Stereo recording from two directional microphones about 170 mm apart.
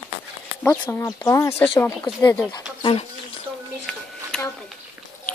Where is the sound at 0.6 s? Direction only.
15° left (ahead or behind).